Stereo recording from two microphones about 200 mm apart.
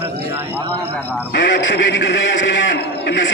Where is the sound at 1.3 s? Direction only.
60° left (ahead or behind).